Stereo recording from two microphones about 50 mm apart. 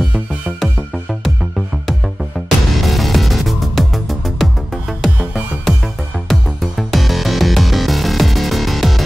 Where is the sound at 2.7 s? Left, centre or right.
Centre.